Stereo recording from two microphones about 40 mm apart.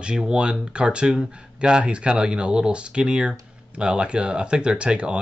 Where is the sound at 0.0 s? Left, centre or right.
Right.